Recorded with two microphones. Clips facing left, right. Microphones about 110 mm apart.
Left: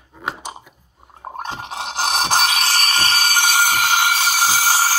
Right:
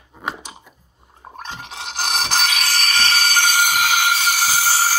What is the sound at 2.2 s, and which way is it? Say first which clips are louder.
Music: left 4 dB; 30° left (ahead or behind).